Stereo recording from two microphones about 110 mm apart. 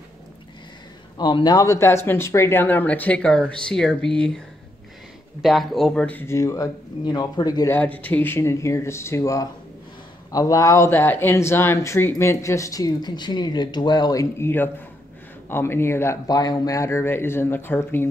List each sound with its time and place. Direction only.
1.1 s speech: 40° left (ahead or behind); by 4.4 s 5° left (ahead or behind)
5.4 s speech: centre (ahead or behind)
6.0 s speech: 20° left (ahead or behind); by 7.6 s 40° left (ahead or behind)
7.6 s speech: 15° left (ahead or behind); by 14.2 s 40° left (ahead or behind)
14.4 s speech: 20° left (ahead or behind)
16.3 s speech: 35° left (ahead or behind)